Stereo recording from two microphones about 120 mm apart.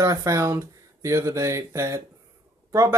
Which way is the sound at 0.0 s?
25° right (ahead or behind).